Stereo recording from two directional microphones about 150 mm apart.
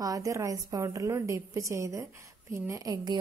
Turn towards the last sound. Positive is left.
turn(degrees=-25)  # may be behind; listen again after turning